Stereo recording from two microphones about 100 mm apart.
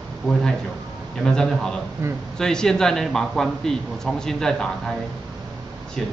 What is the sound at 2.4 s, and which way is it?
A man's voice, 5° left (ahead or behind).